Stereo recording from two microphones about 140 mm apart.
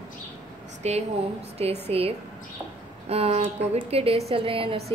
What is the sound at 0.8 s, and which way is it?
Speech, 50° right (ahead or behind).